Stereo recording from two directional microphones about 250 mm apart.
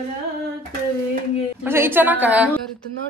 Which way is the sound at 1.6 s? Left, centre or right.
Centre.